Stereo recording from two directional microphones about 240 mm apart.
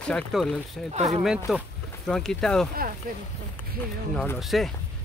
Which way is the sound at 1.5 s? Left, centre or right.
Centre.